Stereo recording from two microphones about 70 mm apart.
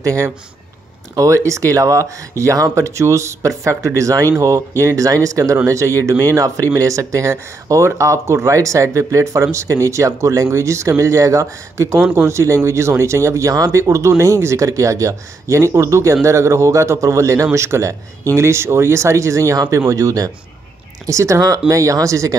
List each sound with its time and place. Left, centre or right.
0.0 s speech: right